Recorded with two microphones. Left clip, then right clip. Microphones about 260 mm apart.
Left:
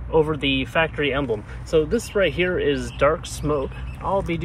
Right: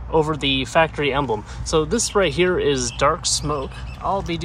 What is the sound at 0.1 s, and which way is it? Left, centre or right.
Speech, centre.